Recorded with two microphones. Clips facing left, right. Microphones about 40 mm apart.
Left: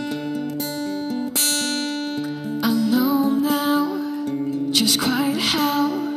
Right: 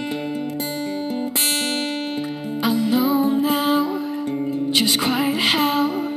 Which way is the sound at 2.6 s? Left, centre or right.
Right.